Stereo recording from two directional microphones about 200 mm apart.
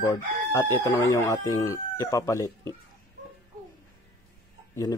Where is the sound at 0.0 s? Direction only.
15° left (ahead or behind).